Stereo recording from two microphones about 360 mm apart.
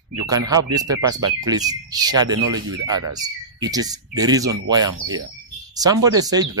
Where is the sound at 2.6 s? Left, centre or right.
Right.